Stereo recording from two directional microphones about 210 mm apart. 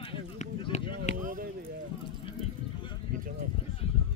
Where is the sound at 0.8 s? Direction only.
45° right (ahead or behind).